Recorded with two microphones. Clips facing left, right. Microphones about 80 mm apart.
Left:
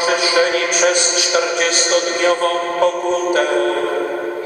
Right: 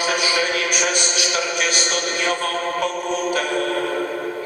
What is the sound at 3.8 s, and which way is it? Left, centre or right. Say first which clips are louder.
Speech: left 4 dB; centre.